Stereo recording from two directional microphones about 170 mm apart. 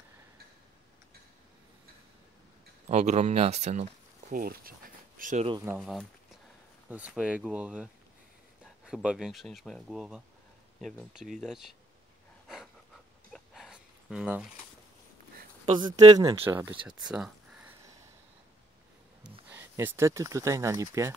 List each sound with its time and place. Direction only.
2.9 s speech: 40° right (ahead or behind)
4.3 s speech: 60° right (ahead or behind)
5.8 s speech: centre (ahead or behind)
13.3 s a sound: centre (ahead or behind)
15.6 s speech: 30° right (ahead or behind)
16.4 s speech: 15° right (ahead or behind)
16.8 s a sound: 5° right (ahead or behind)
19.5 s speech: 10° right (ahead or behind)